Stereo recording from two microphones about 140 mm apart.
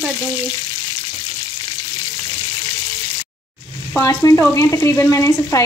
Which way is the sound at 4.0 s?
20° left (ahead or behind).